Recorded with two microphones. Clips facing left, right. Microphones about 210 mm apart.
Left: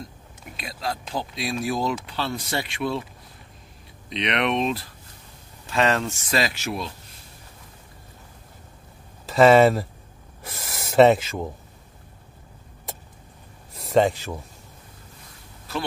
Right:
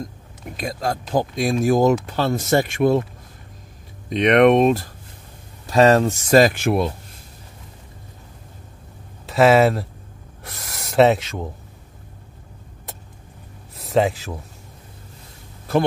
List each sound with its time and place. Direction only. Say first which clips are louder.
0.6 s speech: right 6 dB; 45° right (ahead or behind)
4.1 s speech: right 11 dB; 50° right (ahead or behind)
5.7 s speech: right 8 dB; 35° right (ahead or behind); by 6.9 s 55° right (ahead or behind)
9.2 s speech: even; centre (ahead or behind)
10.4 s a sound: left 1 dB; centre (ahead or behind)
13.7 s speech: even; centre (ahead or behind)